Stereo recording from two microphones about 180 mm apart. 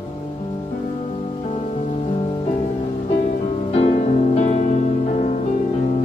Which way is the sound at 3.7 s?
35° left (ahead or behind).